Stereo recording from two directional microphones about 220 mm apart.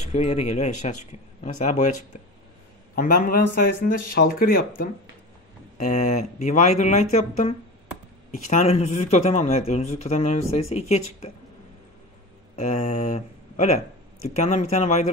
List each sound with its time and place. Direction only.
0.0 s speech: 30° left (ahead or behind)
3.0 s speech: 40° left (ahead or behind)
5.9 s speech: 30° left (ahead or behind)
12.5 s speech: 30° left (ahead or behind)